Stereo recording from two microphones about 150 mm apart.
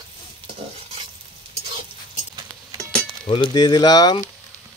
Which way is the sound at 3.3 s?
30° left (ahead or behind).